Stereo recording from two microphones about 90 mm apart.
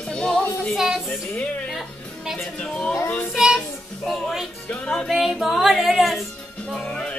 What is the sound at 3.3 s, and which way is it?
Speech, 5° right (ahead or behind).